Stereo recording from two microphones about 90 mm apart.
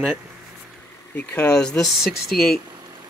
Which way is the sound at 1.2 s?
20° left (ahead or behind).